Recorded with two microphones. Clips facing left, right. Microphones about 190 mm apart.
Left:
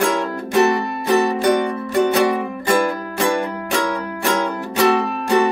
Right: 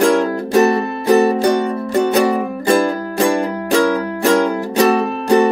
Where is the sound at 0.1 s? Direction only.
35° right (ahead or behind).